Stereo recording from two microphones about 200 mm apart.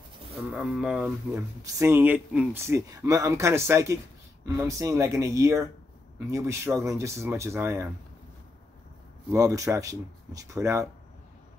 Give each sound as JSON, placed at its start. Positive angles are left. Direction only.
{"t": 0.5, "sound": "speech", "side_deg": -5}
{"t": 1.6, "sound": "speech", "side_deg": -15}
{"t": 9.3, "sound": "speech", "side_deg": -15}